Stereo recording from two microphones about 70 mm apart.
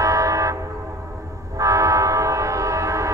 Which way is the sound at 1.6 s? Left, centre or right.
Right.